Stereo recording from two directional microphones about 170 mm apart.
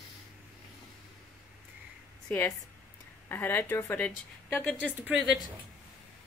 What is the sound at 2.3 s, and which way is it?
A woman's voice, 10° left (ahead or behind).